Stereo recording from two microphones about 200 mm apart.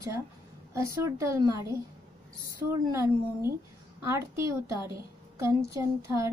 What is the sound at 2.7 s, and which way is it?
A woman's voice, 15° right (ahead or behind).